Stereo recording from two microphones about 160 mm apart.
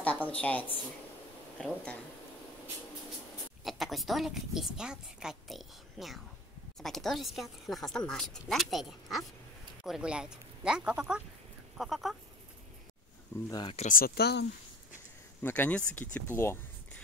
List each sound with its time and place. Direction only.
0.0 s a woman's voice: 10° left (ahead or behind)
3.6 s a woman's voice: centre (ahead or behind)
13.5 s speech: 25° left (ahead or behind)
13.7 s speech: 60° left (ahead or behind); by 14.4 s 80° left
15.4 s speech: 10° left (ahead or behind)